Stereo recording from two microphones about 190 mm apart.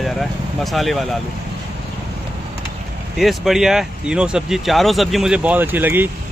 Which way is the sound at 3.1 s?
Centre (ahead or behind).